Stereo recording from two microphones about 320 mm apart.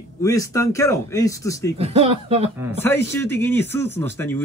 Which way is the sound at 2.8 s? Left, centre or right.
Centre.